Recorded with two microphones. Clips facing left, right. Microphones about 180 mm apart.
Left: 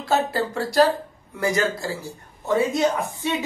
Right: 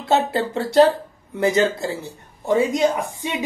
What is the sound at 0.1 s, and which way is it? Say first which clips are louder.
Speech: right 3 dB; 25° right (ahead or behind).